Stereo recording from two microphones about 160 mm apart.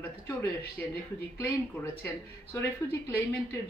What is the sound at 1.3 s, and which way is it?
Speech, 20° left (ahead or behind).